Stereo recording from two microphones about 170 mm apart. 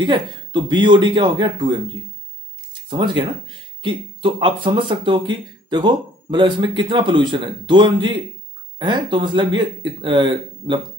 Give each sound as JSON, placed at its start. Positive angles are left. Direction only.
{"t": 0.0, "sound": "speech", "side_deg": -25}
{"t": 2.9, "sound": "speech", "side_deg": -30}